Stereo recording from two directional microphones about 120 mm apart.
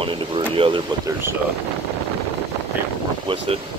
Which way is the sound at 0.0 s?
45° right (ahead or behind).